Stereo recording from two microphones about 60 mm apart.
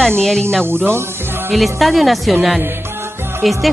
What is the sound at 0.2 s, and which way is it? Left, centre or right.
Speech, centre.